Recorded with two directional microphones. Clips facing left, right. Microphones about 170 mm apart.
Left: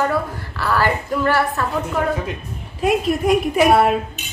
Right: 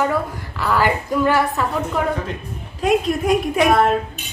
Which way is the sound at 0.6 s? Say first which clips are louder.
Right 1 dB; 15° right (ahead or behind).